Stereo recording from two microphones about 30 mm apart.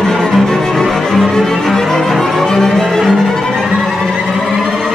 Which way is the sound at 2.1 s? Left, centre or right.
Centre.